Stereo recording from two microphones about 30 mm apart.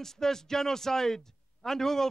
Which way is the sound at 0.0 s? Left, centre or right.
Centre.